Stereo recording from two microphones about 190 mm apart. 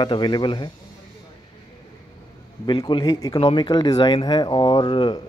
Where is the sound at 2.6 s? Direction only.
25° left (ahead or behind).